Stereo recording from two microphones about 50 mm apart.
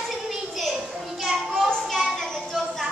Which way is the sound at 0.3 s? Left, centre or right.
Centre.